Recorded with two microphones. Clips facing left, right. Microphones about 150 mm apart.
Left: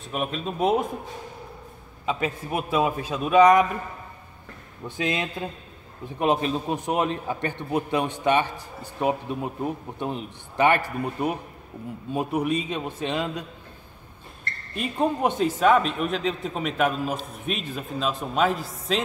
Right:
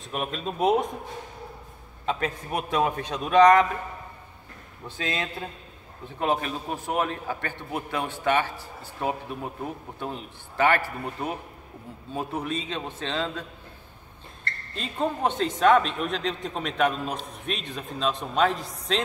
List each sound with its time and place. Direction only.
0.0 s speech: centre (ahead or behind)
2.0 s speech: 5° left (ahead or behind)
4.8 s a man's voice: 15° left (ahead or behind)